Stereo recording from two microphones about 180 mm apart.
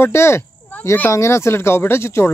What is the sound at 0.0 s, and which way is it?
Speech, 15° left (ahead or behind).